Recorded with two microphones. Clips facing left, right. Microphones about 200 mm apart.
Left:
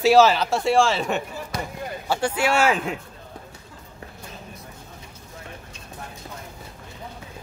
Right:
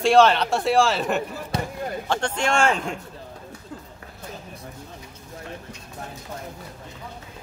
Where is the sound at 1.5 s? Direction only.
30° right (ahead or behind).